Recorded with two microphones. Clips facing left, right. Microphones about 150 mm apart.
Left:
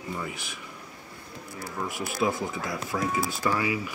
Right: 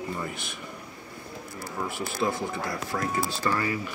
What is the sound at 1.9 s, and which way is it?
Speech, centre (ahead or behind).